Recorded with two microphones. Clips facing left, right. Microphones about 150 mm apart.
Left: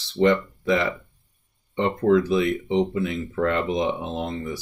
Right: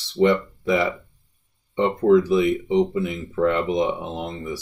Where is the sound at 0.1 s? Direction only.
10° right (ahead or behind).